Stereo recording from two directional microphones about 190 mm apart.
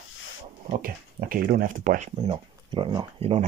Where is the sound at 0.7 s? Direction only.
45° right (ahead or behind).